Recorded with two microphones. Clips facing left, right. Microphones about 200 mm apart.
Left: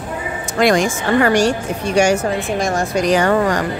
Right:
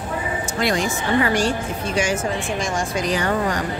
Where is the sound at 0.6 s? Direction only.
90° left.